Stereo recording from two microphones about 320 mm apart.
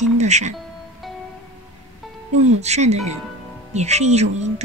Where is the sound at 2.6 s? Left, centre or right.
Right.